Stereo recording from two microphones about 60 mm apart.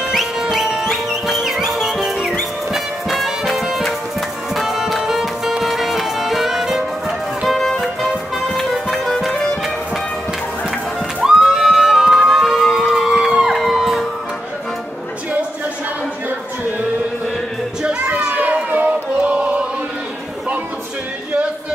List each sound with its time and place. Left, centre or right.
0.1 s music: centre
11.2 s music: centre
18.0 s a sound: right